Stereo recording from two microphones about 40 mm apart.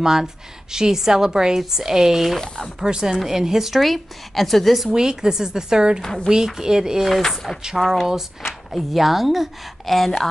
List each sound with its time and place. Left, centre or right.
0.0 s a woman's voice: centre
2.3 s speech: centre
2.8 s a woman's voice: centre
4.8 s a woman's voice: centre
7.1 s a woman's voice: centre